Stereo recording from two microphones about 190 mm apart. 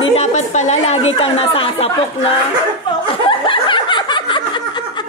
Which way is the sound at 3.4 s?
25° left (ahead or behind).